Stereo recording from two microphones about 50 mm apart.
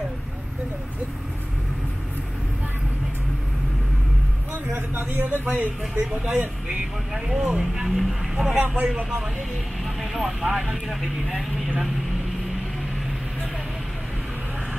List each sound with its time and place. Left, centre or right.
4.7 s speech: right
7.2 s speech: centre
7.9 s speech: centre
8.5 s speech: right
8.8 s speech: centre